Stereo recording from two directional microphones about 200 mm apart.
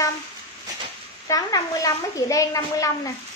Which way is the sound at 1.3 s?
15° left (ahead or behind).